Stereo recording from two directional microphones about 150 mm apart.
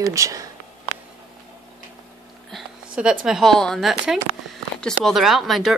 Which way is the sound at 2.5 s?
5° right (ahead or behind).